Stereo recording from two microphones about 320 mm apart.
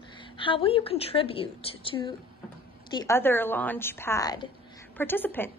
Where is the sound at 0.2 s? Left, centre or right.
Centre.